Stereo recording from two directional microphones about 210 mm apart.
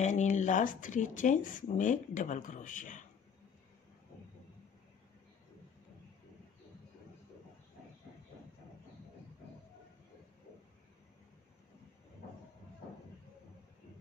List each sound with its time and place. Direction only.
0.0 s speech: 35° left (ahead or behind)